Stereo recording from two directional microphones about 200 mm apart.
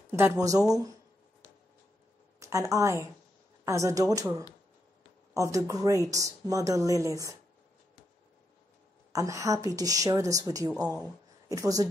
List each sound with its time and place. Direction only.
0.2 s a woman's voice: 15° right (ahead or behind)
2.4 s a woman's voice: 15° right (ahead or behind)
9.1 s a woman's voice: 15° right (ahead or behind)